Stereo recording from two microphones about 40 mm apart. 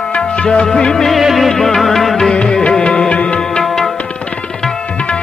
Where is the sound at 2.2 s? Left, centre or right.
Centre.